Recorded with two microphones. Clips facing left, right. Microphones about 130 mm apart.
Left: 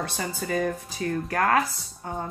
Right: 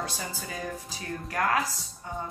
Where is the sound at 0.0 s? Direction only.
60° left (ahead or behind).